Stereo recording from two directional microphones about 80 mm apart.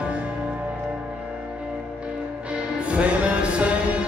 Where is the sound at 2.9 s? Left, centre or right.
Centre.